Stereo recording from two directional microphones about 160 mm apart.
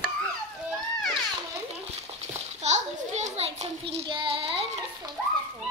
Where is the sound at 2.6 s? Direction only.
45° right (ahead or behind).